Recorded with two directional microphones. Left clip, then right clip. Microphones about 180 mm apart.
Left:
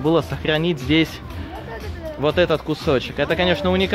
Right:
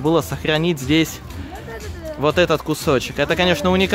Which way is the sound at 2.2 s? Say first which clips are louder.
Right 2 dB; 25° right (ahead or behind).